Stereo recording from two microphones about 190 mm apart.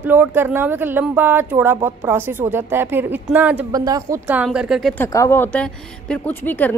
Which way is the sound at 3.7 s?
20° right (ahead or behind).